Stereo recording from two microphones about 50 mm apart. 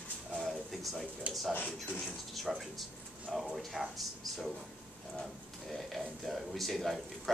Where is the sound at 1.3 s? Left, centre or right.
Right.